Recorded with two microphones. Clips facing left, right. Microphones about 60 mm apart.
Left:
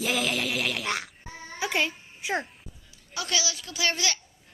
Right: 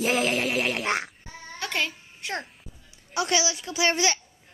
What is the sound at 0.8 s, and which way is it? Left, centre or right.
Speech, right.